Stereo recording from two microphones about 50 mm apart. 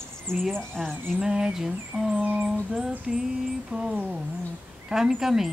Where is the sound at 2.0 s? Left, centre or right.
Right.